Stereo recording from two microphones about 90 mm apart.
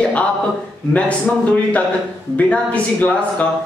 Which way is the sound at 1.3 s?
15° left (ahead or behind).